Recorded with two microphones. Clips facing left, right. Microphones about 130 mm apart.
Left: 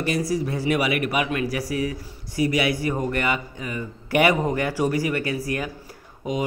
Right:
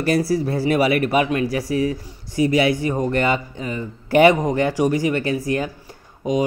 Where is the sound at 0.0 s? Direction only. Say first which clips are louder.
Right 5 dB; 35° right (ahead or behind).